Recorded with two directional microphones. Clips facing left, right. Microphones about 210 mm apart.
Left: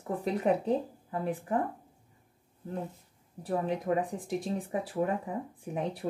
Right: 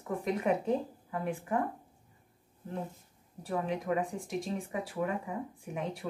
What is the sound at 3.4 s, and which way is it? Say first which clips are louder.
Speech: left 3 dB; 35° left (ahead or behind).